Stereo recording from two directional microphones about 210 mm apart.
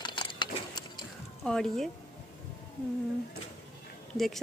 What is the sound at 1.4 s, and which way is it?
Speech, centre (ahead or behind).